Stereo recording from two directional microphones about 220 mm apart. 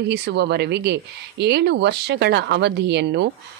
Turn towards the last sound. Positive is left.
turn(degrees=-50)  # may be behind; listen again after turning